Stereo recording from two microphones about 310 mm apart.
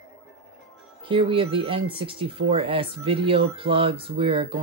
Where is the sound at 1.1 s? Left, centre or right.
Centre.